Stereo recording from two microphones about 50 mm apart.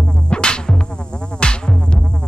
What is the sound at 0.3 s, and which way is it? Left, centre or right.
Music, centre.